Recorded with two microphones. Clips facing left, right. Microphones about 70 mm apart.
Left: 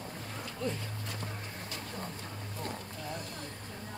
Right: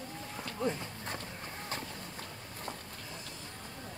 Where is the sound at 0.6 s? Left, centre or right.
Right.